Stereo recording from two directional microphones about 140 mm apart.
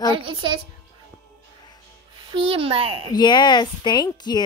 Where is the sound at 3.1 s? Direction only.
30° left (ahead or behind).